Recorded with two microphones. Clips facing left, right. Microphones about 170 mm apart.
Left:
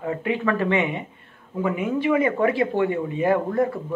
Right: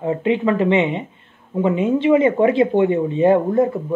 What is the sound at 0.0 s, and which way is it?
Speech, 25° right (ahead or behind).